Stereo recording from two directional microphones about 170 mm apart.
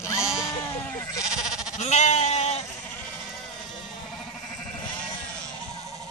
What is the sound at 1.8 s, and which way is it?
Bleat, 40° left (ahead or behind).